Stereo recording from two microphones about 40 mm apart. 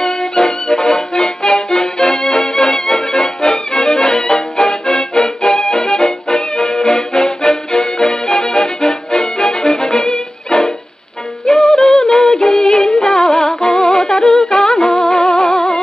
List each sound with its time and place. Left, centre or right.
0.0 s music: centre
13.5 s humming: centre
14.5 s music: centre